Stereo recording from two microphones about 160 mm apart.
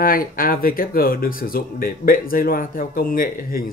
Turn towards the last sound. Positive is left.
turn(degrees=65)  # may be behind; listen again after turning